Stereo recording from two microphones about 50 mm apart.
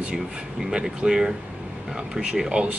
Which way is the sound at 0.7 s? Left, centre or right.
Centre.